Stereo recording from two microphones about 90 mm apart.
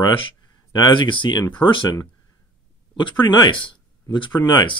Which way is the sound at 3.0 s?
55° left (ahead or behind).